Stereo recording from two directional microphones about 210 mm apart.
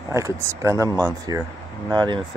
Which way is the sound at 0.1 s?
15° right (ahead or behind).